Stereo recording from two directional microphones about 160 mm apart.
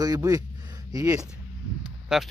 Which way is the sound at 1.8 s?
5° right (ahead or behind).